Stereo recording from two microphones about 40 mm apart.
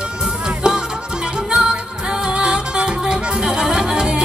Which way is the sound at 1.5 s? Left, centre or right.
Centre.